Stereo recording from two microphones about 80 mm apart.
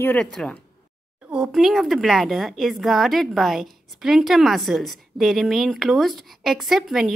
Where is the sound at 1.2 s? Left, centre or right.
Centre.